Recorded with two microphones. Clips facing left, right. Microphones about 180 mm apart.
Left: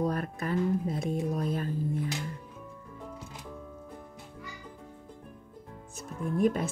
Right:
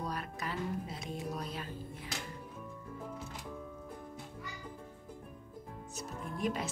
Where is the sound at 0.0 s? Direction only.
50° left (ahead or behind).